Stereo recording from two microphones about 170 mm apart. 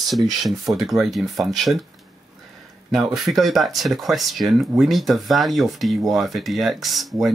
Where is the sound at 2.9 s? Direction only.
Centre (ahead or behind).